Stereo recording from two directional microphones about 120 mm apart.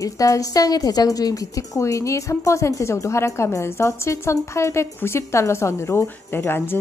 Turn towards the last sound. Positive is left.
turn(degrees=20)  # may be behind; listen again after turning